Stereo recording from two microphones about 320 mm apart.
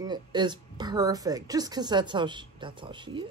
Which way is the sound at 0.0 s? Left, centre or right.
Centre.